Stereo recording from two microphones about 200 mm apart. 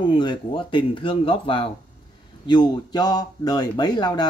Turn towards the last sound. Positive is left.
turn(degrees=20)  # may be behind; listen again after turning